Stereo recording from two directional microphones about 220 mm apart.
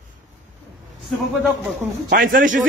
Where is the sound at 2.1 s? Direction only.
40° right (ahead or behind).